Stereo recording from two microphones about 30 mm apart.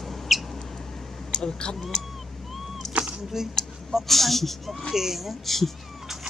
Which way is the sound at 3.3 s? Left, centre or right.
Centre.